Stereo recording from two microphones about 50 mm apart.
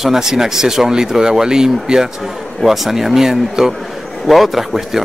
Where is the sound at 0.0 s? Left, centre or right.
Centre.